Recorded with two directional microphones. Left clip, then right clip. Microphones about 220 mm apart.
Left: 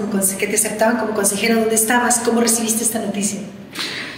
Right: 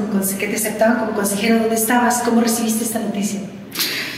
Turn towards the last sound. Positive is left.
turn(degrees=-55)  # may be behind; listen again after turning